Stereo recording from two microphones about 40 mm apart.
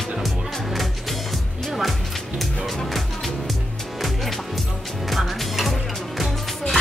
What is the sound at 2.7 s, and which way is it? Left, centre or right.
Music, centre.